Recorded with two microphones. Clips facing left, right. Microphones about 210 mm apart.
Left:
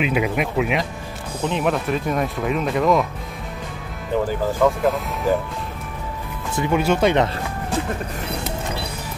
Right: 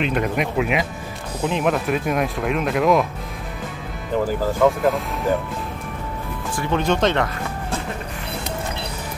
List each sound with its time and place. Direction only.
0.0 s speech: 5° left (ahead or behind)
4.6 s speech: centre (ahead or behind)
6.7 s speech: 10° left (ahead or behind)